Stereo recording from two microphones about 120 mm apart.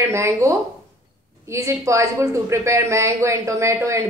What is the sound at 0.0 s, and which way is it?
Speech, 25° right (ahead or behind).